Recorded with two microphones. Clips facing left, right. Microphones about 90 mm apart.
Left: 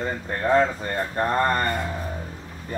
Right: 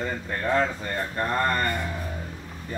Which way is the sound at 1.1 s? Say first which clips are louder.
Left 3 dB; 25° left (ahead or behind).